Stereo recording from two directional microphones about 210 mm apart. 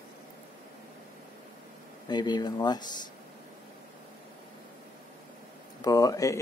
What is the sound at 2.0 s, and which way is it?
Speech, 20° left (ahead or behind).